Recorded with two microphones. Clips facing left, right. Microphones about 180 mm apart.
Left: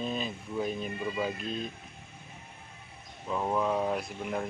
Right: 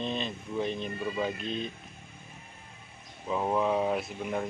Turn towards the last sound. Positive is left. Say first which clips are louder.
# right 1 dB
turn(degrees=0)  # may be behind; listen again after turning